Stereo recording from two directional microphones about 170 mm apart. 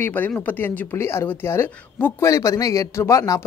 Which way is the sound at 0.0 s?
10° left (ahead or behind).